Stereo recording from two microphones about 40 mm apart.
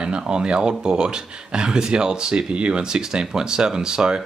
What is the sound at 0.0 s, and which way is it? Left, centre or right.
Speech, right.